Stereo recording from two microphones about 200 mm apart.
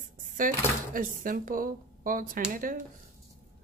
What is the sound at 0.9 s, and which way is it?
Speech, 45° right (ahead or behind).